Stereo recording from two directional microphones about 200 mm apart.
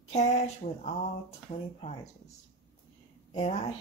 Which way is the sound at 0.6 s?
45° left (ahead or behind).